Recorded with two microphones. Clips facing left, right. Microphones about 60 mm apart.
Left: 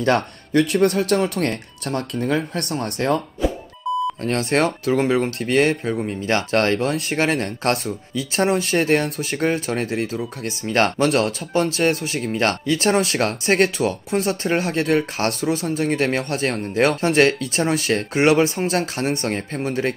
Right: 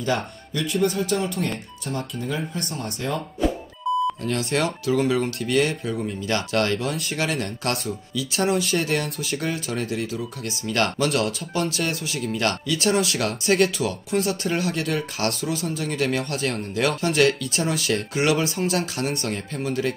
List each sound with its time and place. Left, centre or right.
0.0 s speech: left
3.9 s music: centre
4.2 s speech: left